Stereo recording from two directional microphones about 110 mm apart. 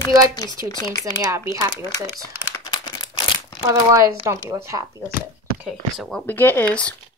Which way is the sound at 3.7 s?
30° right (ahead or behind).